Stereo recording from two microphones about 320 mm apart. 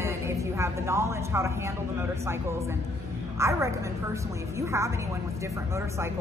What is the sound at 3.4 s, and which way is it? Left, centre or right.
Speech, centre.